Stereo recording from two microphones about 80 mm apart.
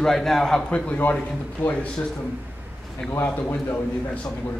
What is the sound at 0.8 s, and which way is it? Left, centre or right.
Speech, centre.